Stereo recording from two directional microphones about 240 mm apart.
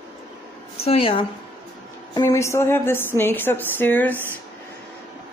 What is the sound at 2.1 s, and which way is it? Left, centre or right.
Speech, centre.